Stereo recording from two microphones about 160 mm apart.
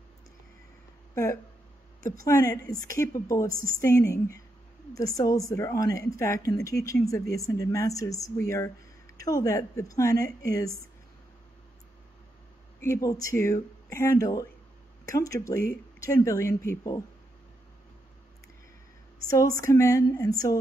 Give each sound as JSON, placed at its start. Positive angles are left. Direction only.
{"t": 1.1, "sound": "a woman's voice", "side_deg": 20}
{"t": 12.8, "sound": "a woman's voice", "side_deg": 20}
{"t": 19.2, "sound": "a woman's voice", "side_deg": 20}